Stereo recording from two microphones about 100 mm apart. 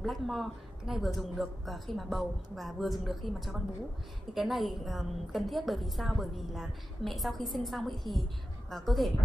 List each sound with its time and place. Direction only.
0.0 s a woman's voice: centre (ahead or behind)